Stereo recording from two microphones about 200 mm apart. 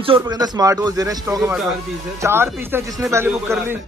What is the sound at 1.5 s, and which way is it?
Speech, centre (ahead or behind).